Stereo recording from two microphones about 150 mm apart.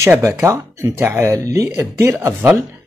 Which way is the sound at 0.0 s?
15° right (ahead or behind).